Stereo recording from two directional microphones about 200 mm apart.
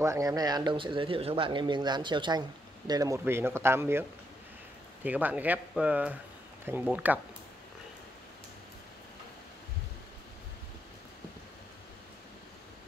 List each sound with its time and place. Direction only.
0.0 s speech: 15° right (ahead or behind)
5.0 s speech: 10° right (ahead or behind)